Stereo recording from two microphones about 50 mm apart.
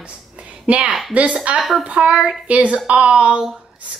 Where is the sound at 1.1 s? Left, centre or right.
Right.